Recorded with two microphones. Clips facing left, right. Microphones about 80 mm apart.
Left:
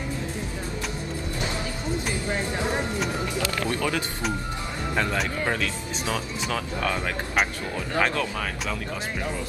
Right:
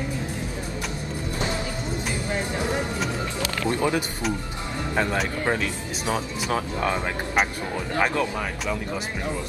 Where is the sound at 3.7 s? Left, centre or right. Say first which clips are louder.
Right 3 dB; right.